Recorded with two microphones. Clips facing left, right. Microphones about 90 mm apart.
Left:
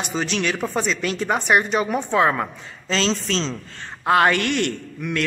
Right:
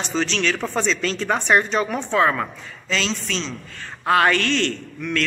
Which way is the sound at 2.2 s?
20° left (ahead or behind).